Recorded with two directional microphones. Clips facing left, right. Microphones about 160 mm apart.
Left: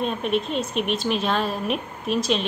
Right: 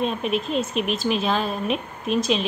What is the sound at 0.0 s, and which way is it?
Speech, centre (ahead or behind).